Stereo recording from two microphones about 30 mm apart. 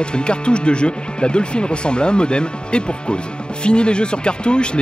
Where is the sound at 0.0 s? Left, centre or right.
Left.